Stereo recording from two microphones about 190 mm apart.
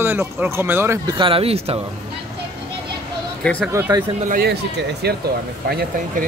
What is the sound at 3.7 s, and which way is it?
Speech, 15° right (ahead or behind).